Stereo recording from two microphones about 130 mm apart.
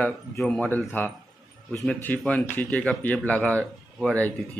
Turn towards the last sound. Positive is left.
turn(degrees=10)  # may be behind; listen again after turning